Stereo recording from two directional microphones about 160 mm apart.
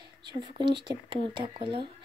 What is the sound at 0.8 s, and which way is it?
Speech, 30° right (ahead or behind).